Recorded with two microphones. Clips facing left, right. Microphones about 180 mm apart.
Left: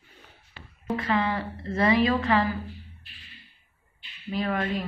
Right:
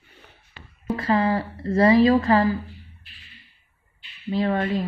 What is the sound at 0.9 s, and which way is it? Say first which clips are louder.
A woman's voice: right 5 dB; 40° right (ahead or behind).